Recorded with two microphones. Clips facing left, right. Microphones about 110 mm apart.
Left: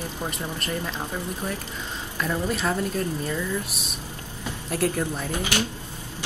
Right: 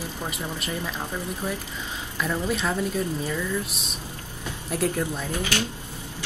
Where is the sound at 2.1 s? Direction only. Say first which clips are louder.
Even; 5° left (ahead or behind).